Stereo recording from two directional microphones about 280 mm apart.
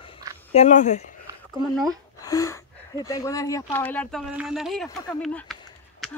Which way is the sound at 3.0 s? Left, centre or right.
Centre.